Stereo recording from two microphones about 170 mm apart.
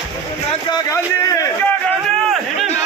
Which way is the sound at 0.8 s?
15° left (ahead or behind).